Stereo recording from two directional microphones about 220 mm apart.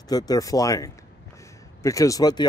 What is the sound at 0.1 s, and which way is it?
A man's voice, 15° left (ahead or behind).